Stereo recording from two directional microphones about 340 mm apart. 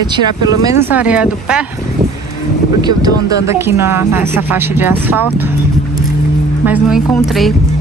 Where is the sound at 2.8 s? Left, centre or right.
Centre.